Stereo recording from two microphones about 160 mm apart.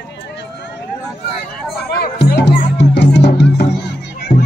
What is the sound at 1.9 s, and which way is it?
Music, 85° left.